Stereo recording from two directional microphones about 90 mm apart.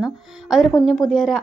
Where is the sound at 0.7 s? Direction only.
5° left (ahead or behind).